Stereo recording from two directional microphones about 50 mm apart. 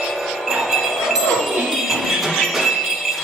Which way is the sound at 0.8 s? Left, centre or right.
Centre.